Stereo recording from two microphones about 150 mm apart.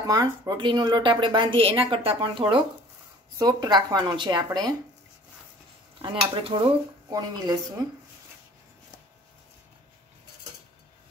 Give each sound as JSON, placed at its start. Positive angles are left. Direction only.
{"t": 0.0, "sound": "speech", "side_deg": -25}
{"t": 5.9, "sound": "speech", "side_deg": -35}